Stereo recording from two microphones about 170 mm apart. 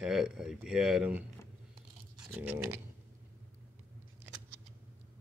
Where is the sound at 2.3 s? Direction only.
10° right (ahead or behind).